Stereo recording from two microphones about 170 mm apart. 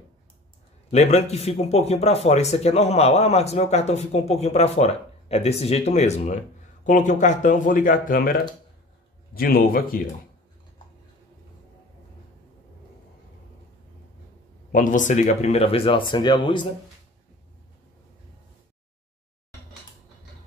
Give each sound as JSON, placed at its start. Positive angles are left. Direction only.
{"t": 0.9, "sound": "a man's voice", "side_deg": 40}
{"t": 14.7, "sound": "speech", "side_deg": 50}